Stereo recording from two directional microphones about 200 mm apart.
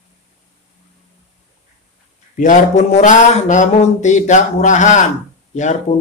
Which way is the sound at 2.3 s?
40° left (ahead or behind).